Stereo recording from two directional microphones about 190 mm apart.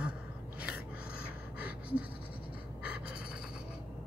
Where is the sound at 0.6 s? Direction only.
5° right (ahead or behind).